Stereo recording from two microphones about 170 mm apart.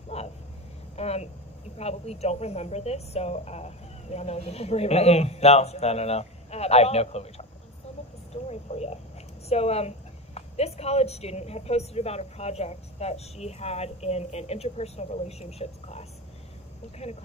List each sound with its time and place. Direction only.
0.1 s a sound: 40° left (ahead or behind)
1.8 s a woman's voice: 40° left (ahead or behind)
8.5 s a woman's voice: 40° left (ahead or behind)